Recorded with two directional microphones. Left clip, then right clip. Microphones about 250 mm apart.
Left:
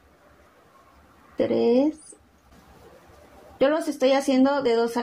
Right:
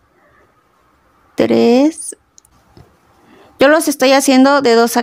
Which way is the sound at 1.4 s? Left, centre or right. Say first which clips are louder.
Right 10 dB; right.